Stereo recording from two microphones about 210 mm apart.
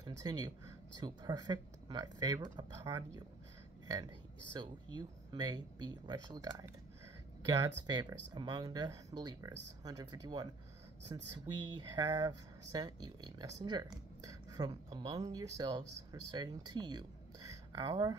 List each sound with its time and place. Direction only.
0.0 s speech: 20° right (ahead or behind)